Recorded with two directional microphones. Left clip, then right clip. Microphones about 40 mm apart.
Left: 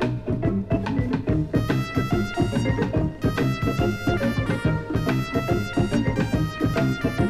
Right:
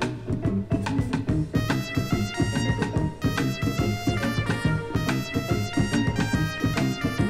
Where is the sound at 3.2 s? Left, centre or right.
Left.